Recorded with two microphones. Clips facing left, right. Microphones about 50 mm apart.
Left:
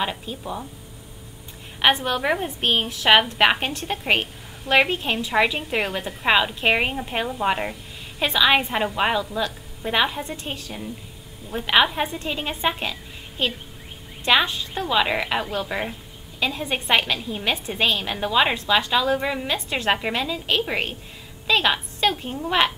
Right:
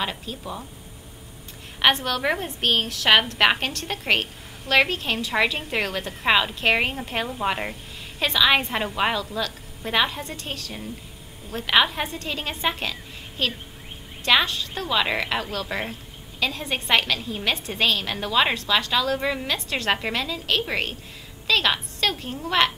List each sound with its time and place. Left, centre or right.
0.0 s a woman's voice: centre
1.8 s a woman's voice: centre
6.2 s a woman's voice: centre
10.2 s a woman's voice: centre